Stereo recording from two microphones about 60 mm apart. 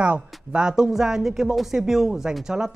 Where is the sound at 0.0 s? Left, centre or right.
Centre.